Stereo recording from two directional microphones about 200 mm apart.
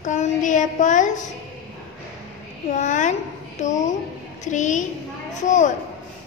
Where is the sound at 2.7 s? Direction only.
40° left (ahead or behind).